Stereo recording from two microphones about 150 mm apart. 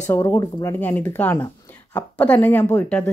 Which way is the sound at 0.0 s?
20° left (ahead or behind).